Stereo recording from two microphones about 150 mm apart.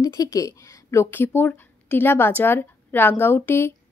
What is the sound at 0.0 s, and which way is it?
Speech, 20° left (ahead or behind).